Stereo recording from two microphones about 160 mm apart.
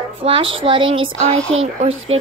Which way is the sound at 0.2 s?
35° right (ahead or behind).